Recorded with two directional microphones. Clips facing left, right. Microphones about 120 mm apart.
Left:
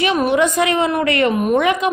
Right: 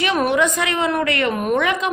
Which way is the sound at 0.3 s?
20° left (ahead or behind).